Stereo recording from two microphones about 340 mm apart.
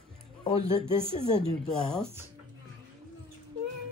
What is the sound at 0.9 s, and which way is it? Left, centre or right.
Speech, centre.